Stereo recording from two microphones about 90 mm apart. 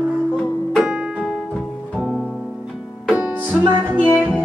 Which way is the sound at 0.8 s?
5° right (ahead or behind).